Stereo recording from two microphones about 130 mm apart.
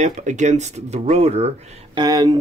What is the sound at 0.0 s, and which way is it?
Speech, 65° right (ahead or behind).